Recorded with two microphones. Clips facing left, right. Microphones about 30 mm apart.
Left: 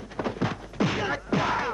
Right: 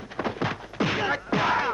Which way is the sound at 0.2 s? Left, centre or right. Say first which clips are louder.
Right 1 dB; centre.